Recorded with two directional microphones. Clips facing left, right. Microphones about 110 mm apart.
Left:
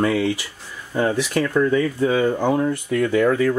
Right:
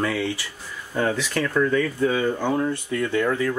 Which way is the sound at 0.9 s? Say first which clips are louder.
Left 3 dB; 15° left (ahead or behind).